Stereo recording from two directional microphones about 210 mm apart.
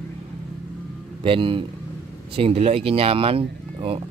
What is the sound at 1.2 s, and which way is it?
Speech, 25° right (ahead or behind).